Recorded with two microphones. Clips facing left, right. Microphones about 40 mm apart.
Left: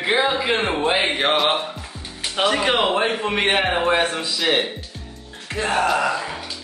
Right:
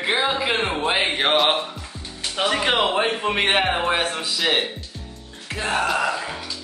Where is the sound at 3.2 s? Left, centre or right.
Centre.